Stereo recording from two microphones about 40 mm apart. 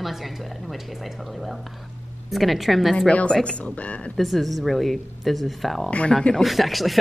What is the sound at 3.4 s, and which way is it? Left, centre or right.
Speech, left.